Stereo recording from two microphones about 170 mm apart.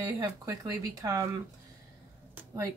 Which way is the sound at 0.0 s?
20° right (ahead or behind).